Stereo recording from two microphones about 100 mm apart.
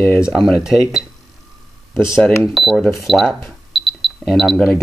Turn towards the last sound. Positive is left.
turn(degrees=0)  # may be behind; listen again after turning